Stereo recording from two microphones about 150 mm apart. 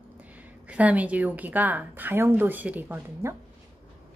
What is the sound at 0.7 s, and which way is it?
A woman's voice, 10° right (ahead or behind).